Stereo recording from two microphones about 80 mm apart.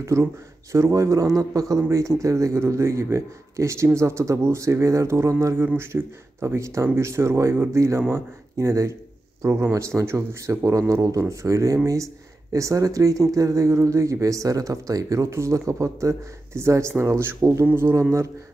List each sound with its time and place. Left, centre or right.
0.0 s a man's voice: right